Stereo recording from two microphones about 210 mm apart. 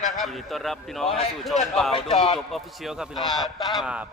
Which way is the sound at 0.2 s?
Centre (ahead or behind).